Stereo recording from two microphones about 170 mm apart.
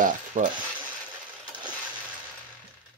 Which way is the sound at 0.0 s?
45° right (ahead or behind).